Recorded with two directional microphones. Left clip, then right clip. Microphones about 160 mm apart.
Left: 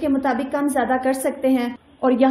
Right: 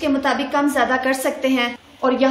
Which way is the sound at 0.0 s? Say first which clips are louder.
Right 2 dB; 45° left (ahead or behind).